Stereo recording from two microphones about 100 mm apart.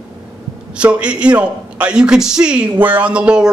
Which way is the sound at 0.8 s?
10° right (ahead or behind).